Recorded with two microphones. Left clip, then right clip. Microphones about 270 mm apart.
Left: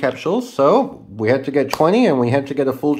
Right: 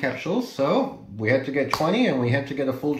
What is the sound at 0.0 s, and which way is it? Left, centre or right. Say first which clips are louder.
Speech: left 7 dB; centre.